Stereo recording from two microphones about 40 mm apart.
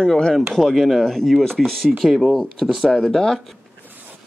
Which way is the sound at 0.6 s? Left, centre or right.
Centre.